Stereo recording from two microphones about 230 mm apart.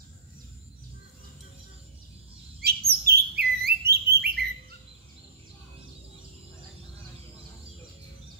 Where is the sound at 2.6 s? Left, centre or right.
Right.